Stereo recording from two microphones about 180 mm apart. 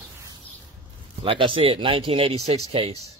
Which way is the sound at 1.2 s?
30° right (ahead or behind).